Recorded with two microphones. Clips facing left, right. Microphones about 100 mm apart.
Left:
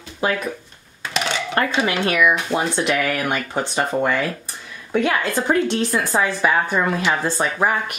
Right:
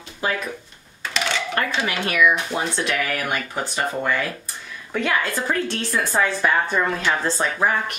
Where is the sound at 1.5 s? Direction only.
30° left (ahead or behind).